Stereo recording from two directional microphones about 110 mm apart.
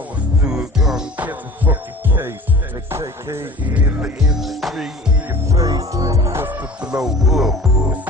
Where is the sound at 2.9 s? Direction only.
25° right (ahead or behind).